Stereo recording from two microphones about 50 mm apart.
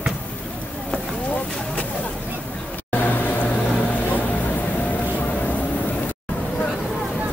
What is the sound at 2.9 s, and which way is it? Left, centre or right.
Vehicle, left.